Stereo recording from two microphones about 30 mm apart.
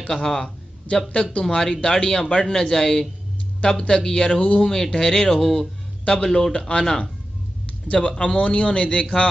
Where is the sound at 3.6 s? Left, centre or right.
Left.